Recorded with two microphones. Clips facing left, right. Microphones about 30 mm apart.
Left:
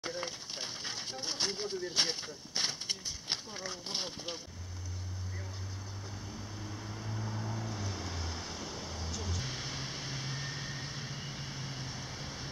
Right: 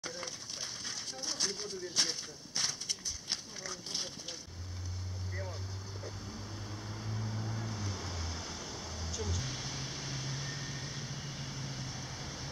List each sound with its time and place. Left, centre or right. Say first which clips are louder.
0.0 s speech: left 3 dB; left
6.6 s vehicle: left 1 dB; centre